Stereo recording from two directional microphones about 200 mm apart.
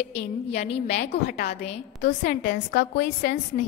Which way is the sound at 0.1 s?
30° left (ahead or behind).